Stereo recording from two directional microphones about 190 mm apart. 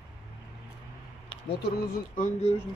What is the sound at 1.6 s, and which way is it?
Speech, 45° left (ahead or behind).